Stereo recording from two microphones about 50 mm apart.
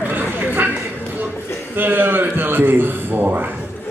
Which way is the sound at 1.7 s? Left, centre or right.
Right.